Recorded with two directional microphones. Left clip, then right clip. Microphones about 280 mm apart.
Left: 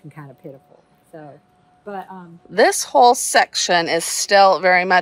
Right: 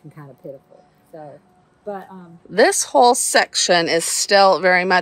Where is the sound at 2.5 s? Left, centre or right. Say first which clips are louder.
Even; centre.